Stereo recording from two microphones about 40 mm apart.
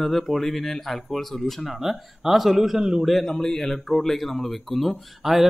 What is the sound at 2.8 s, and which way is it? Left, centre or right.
Speech, centre.